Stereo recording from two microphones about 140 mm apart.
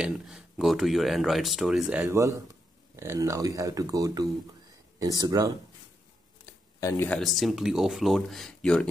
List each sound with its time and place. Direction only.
0.0 s speech: 5° right (ahead or behind)
2.0 s speech: 20° right (ahead or behind)
6.8 s speech: 25° left (ahead or behind)
7.1 s speech: centre (ahead or behind)